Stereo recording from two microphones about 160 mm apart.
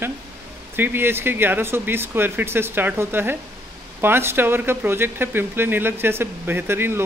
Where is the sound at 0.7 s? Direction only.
15° right (ahead or behind).